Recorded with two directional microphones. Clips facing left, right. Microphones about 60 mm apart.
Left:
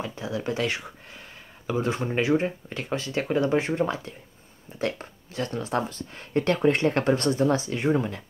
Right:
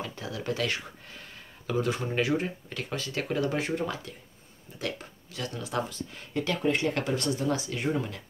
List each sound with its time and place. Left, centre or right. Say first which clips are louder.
0.0 s speech: left 5 dB; left